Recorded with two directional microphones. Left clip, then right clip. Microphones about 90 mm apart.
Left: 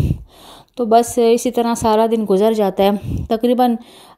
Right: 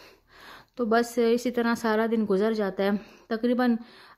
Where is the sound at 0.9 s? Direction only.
45° right (ahead or behind).